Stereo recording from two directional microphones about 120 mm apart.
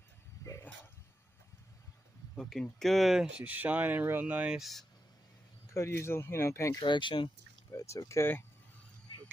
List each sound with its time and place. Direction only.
0.4 s dog: 25° left (ahead or behind)
2.3 s speech: 5° left (ahead or behind)
5.7 s speech: 20° left (ahead or behind)
6.8 s speech: 40° left (ahead or behind)
7.7 s speech: 25° left (ahead or behind)